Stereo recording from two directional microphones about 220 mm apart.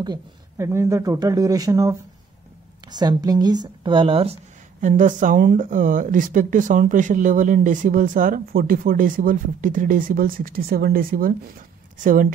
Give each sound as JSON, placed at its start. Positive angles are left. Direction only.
{"t": 0.0, "sound": "speech", "side_deg": -15}
{"t": 4.8, "sound": "speech", "side_deg": -35}